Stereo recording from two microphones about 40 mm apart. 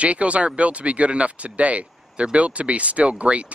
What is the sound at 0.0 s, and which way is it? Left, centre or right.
Speech, right.